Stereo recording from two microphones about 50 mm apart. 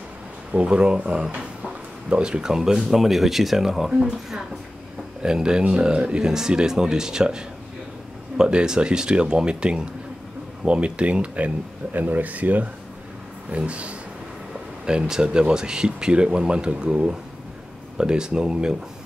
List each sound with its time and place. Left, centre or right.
0.5 s speech: right
14.9 s speech: centre